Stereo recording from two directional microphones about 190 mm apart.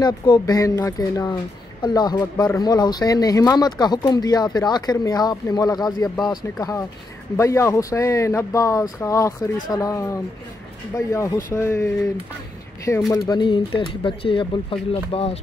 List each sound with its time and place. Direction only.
0.0 s speech: 20° left (ahead or behind)
13.1 s speech: 20° left (ahead or behind)